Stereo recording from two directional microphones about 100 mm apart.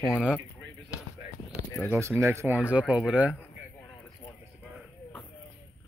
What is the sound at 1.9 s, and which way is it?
Speech, 25° right (ahead or behind).